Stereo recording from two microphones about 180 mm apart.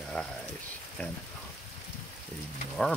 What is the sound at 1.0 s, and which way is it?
Speech, 10° left (ahead or behind).